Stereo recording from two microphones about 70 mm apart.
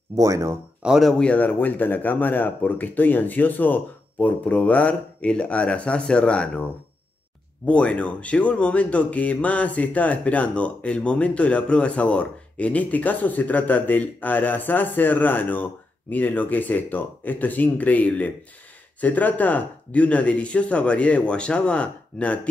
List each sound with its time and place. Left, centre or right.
0.1 s speech: right
0.8 s speech: centre
1.2 s speech: left
7.6 s speech: centre